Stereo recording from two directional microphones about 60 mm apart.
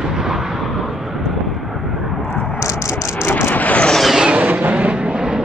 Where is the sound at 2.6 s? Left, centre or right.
Left.